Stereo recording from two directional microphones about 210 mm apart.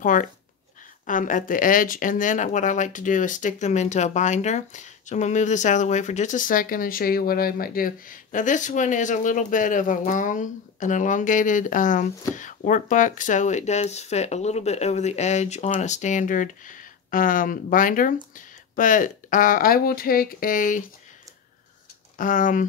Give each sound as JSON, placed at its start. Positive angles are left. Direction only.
{"t": 0.0, "sound": "speech", "side_deg": 40}
{"t": 22.1, "sound": "speech", "side_deg": 40}